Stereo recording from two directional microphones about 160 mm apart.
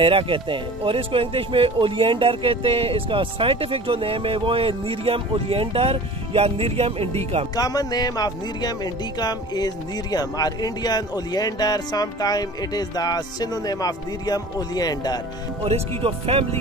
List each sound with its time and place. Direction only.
0.0 s speech: 35° right (ahead or behind)
7.5 s speech: 25° left (ahead or behind)
15.6 s speech: 35° right (ahead or behind)